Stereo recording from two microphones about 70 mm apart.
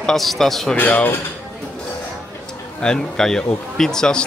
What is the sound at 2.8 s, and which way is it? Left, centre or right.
Speech, centre.